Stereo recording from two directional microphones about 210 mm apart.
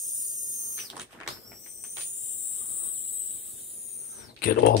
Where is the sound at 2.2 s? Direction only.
30° right (ahead or behind).